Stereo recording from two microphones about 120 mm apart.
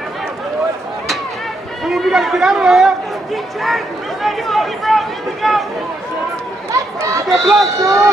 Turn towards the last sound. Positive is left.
turn(degrees=0)  # may be behind; listen again after turning